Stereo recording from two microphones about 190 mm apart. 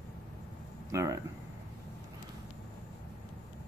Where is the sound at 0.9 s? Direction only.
15° right (ahead or behind).